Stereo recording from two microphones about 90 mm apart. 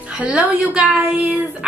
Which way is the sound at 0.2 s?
15° right (ahead or behind).